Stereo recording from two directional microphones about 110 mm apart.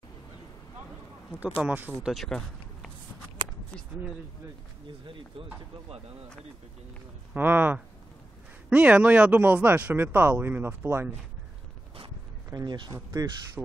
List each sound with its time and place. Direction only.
1.6 s speech: 15° right (ahead or behind)
2.0 s speech: centre (ahead or behind)
7.3 s speech: 20° right (ahead or behind)
12.6 s speech: 45° right (ahead or behind)
12.9 s speech: 30° right (ahead or behind)